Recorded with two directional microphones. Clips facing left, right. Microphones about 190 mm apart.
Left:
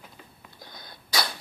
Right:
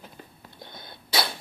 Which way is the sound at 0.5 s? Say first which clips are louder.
Right 3 dB; 25° right (ahead or behind).